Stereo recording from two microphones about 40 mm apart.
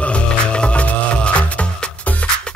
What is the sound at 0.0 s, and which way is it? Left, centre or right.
Music, left.